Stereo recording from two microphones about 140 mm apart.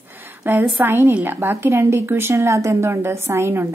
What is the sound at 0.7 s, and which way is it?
A woman's voice, 15° right (ahead or behind).